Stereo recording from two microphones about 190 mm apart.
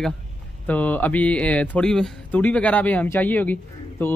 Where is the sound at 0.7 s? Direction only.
10° left (ahead or behind).